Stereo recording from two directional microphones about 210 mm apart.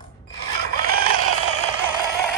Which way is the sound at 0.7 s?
45° right (ahead or behind).